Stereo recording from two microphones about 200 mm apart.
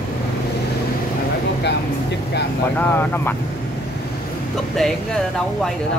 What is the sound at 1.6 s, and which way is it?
Speech, 55° left (ahead or behind).